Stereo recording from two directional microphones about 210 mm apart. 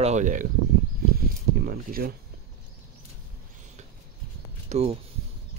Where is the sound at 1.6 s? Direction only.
45° right (ahead or behind).